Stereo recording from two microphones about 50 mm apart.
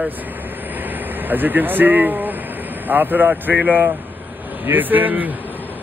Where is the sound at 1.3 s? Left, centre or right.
Right.